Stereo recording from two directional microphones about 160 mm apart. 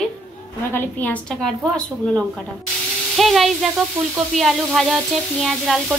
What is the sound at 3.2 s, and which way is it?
Sizzle, centre (ahead or behind).